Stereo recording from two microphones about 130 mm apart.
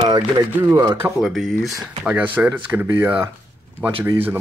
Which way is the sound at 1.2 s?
Centre (ahead or behind).